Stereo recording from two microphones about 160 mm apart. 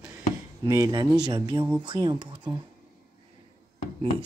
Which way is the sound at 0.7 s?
25° right (ahead or behind).